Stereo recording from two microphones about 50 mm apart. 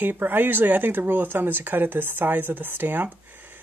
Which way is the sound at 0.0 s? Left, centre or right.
Right.